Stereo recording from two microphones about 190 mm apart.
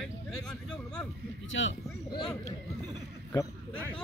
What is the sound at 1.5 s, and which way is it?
Speech, 80° left.